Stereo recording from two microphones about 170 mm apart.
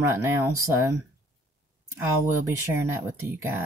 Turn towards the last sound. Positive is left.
turn(degrees=-15)  # may be behind; listen again after turning